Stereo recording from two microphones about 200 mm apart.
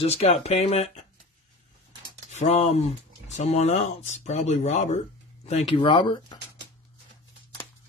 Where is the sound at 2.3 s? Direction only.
30° left (ahead or behind).